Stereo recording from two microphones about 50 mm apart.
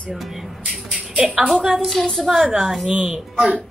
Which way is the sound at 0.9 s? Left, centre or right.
Centre.